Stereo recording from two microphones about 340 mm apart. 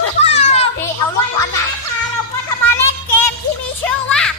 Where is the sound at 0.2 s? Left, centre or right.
Centre.